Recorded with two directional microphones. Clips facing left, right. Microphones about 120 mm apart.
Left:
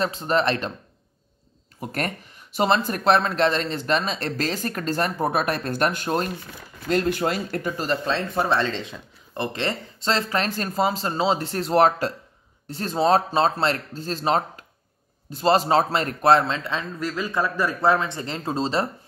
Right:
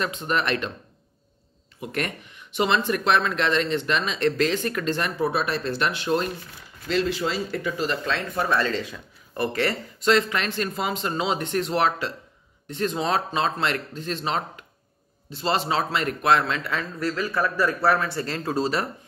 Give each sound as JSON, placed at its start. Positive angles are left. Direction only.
{"t": 0.0, "sound": "speech", "side_deg": 35}
{"t": 1.8, "sound": "a man's voice", "side_deg": 40}